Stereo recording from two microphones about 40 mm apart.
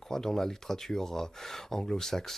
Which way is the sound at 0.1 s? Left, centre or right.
Centre.